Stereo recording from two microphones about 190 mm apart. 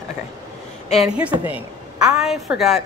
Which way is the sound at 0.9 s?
5° right (ahead or behind).